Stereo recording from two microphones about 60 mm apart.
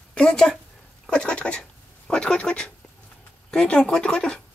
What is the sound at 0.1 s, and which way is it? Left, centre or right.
Speech, centre.